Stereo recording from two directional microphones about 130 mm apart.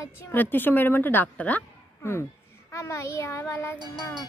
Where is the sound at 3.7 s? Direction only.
35° right (ahead or behind).